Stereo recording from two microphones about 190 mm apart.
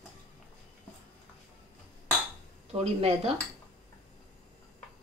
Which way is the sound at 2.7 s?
30° right (ahead or behind).